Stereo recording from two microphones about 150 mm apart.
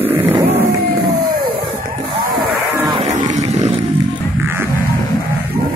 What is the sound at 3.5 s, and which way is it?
Wild animals, 45° right (ahead or behind).